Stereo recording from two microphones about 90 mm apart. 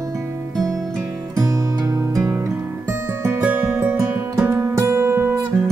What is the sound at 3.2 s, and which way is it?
Music, 20° right (ahead or behind).